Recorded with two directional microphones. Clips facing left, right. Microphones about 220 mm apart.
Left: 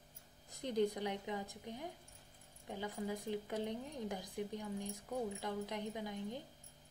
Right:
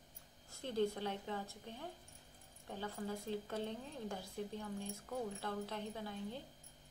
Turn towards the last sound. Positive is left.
turn(degrees=15)  # may be behind; listen again after turning